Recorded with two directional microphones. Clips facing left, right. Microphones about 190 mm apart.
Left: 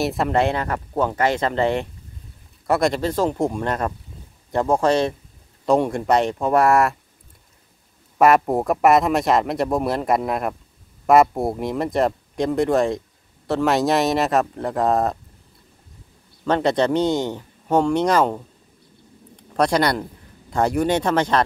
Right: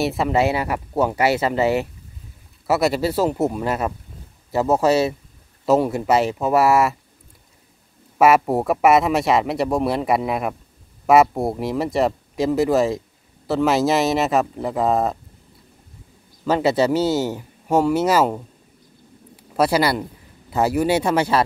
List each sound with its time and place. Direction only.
0.0 s a man's voice: centre (ahead or behind)
8.2 s a man's voice: centre (ahead or behind)
16.4 s a man's voice: 5° right (ahead or behind)